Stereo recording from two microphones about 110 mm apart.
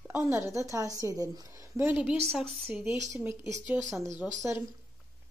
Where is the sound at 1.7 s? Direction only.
15° right (ahead or behind).